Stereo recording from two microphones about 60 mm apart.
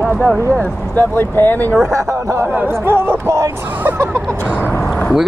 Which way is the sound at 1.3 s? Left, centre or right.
Left.